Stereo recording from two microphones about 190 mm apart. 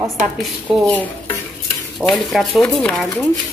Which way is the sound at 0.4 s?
5° left (ahead or behind).